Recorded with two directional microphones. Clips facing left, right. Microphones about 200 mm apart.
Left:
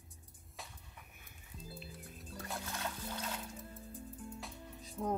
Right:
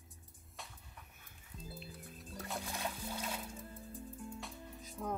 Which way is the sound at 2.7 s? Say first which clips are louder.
Right 1 dB; 15° right (ahead or behind).